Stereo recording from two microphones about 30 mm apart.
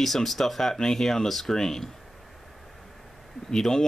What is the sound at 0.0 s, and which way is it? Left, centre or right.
Speech, centre.